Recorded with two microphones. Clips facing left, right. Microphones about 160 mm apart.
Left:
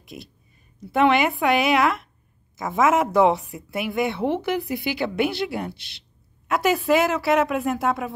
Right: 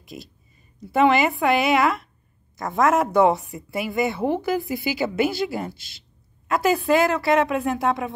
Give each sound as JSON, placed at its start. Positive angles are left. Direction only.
{"t": 0.0, "sound": "a woman's voice", "side_deg": 0}
{"t": 5.8, "sound": "speech", "side_deg": 70}
{"t": 6.4, "sound": "a woman's voice", "side_deg": 0}